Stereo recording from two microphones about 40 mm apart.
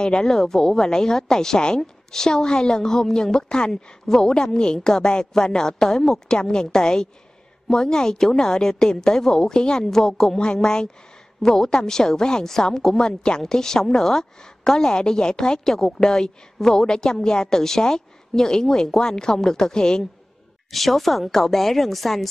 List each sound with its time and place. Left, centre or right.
0.0 s a woman's voice: centre
20.7 s speech: centre